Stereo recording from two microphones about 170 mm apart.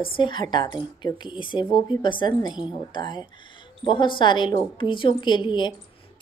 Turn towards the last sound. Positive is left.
turn(degrees=25)  # may be behind; listen again after turning